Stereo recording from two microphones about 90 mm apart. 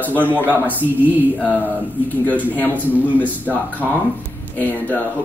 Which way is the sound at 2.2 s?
20° left (ahead or behind).